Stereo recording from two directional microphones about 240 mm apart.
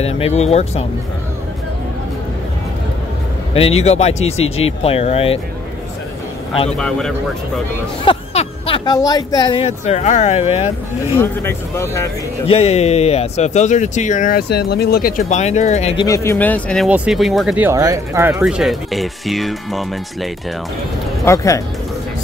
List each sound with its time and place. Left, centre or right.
0.0 s speech: left
3.5 s speech: left
6.8 s speech: centre
8.0 s speech: left
11.1 s speech: centre
12.4 s speech: left
16.1 s speech: centre
21.2 s speech: centre